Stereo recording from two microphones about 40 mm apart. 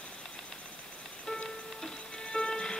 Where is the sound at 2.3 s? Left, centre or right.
Centre.